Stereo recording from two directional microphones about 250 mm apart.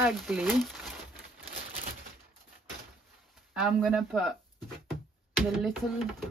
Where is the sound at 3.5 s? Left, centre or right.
Centre.